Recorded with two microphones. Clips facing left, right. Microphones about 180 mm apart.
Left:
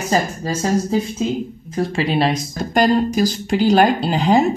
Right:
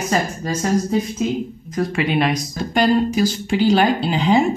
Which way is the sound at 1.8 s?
30° left (ahead or behind).